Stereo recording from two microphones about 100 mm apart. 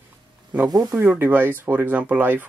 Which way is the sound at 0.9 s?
20° right (ahead or behind).